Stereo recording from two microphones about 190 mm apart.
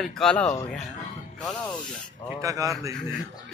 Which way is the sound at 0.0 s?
5° left (ahead or behind).